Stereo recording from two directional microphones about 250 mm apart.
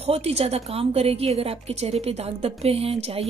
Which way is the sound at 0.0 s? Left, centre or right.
Right.